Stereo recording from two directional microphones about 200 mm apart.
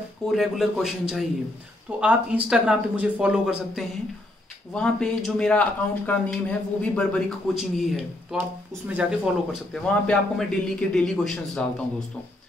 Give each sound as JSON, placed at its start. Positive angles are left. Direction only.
{"t": 0.3, "sound": "speech", "side_deg": 0}